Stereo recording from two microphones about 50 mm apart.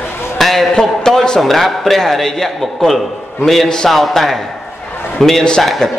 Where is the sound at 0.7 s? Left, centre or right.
Centre.